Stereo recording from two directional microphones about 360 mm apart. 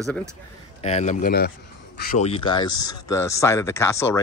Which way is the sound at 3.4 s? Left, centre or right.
Centre.